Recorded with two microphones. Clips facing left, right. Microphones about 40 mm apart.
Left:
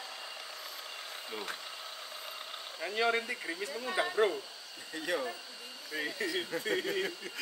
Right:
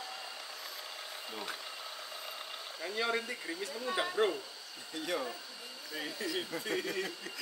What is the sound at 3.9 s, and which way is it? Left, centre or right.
Speech, centre.